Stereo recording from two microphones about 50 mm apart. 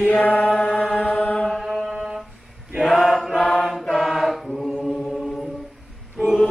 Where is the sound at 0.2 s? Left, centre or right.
Left.